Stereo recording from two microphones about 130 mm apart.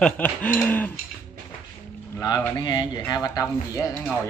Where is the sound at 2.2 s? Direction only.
30° left (ahead or behind).